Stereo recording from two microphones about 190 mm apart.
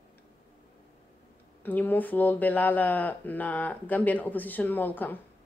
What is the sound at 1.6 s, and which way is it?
Speech, 10° left (ahead or behind).